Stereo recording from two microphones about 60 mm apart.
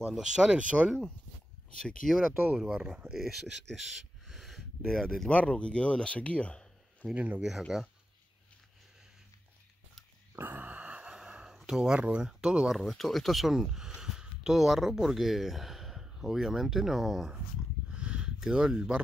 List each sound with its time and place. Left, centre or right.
0.1 s speech: centre
2.0 s speech: centre
3.1 s speech: centre
5.3 s speech: left
7.2 s speech: right
7.7 s speech: centre
10.3 s a sound: right; by 11.5 s centre
11.6 s speech: centre
12.7 s speech: centre
17.9 s a sound: centre